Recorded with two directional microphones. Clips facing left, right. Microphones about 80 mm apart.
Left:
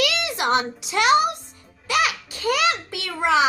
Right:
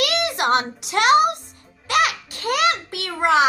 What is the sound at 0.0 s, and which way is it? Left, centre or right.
A child's voice, right.